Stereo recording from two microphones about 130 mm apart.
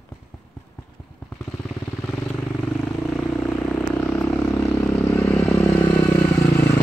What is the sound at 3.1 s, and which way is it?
Vehicle, 10° left (ahead or behind).